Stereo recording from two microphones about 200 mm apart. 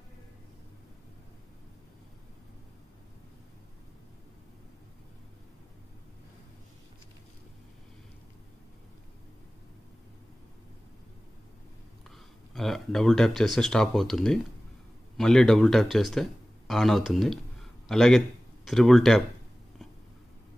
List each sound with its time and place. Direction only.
12.5 s speech: centre (ahead or behind)